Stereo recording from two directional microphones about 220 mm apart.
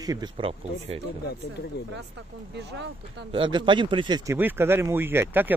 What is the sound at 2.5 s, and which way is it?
Speech, 50° right (ahead or behind).